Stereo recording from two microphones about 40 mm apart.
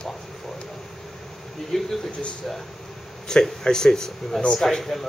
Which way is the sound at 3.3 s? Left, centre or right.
Centre.